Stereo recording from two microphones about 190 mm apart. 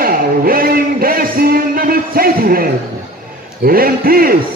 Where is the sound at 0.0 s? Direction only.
50° right (ahead or behind).